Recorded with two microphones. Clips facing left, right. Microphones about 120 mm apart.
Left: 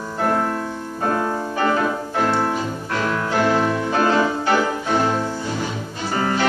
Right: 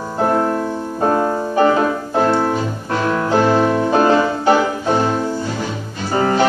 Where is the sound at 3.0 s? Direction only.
30° right (ahead or behind).